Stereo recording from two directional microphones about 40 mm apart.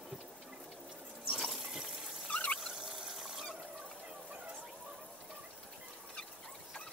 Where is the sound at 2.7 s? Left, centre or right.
Centre.